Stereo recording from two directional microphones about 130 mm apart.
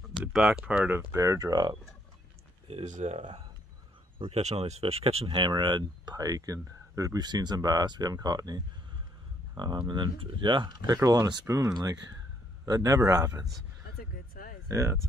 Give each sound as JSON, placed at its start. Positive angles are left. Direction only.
{"t": 0.5, "sound": "speech", "side_deg": -10}
{"t": 2.7, "sound": "speech", "side_deg": -65}
{"t": 3.2, "sound": "speech", "side_deg": -40}
{"t": 4.2, "sound": "speech", "side_deg": -55}
{"t": 14.4, "sound": "a sound", "side_deg": 90}
{"t": 14.7, "sound": "speech", "side_deg": -25}